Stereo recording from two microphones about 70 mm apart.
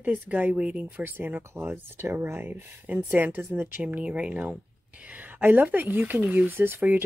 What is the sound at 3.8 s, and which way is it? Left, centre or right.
Speech, centre.